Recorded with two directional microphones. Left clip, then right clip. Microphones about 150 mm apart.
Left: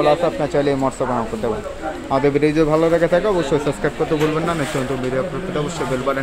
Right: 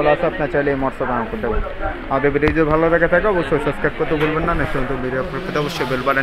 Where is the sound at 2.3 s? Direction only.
25° left (ahead or behind).